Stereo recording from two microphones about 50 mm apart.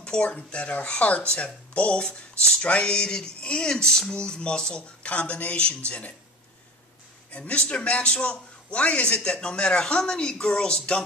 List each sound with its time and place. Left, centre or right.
0.0 s a man's voice: left
7.3 s a man's voice: left